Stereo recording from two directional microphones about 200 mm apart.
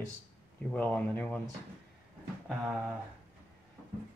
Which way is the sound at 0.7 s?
5° left (ahead or behind).